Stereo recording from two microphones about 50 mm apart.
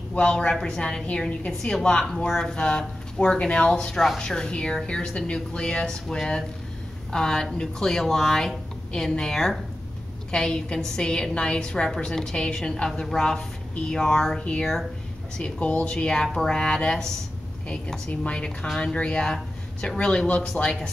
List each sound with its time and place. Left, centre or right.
0.1 s a woman's voice: left
3.7 s a woman's voice: centre
15.3 s a woman's voice: left